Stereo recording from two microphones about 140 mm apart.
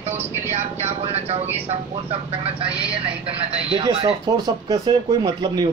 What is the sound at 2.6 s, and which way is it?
Speech, 10° right (ahead or behind).